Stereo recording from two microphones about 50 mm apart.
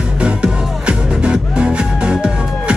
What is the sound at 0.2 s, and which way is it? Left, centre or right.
Music, right.